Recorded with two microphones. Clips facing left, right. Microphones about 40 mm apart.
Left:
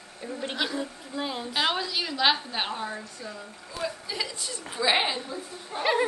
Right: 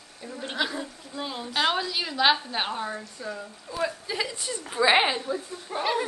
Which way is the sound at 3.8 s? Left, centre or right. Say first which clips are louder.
Right 2 dB; centre.